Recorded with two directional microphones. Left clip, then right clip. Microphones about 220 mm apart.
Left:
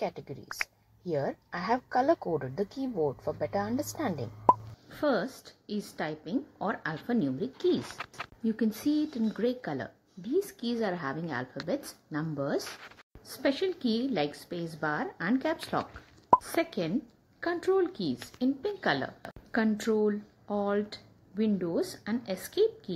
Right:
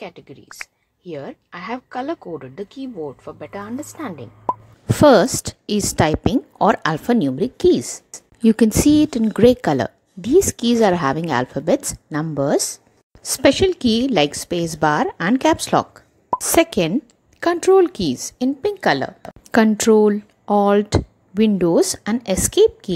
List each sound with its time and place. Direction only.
1.0 s speech: 20° right (ahead or behind)
1.5 s a woman's voice: 35° right (ahead or behind)
4.5 s plop: centre (ahead or behind)
4.8 s a woman's voice: 55° right (ahead or behind)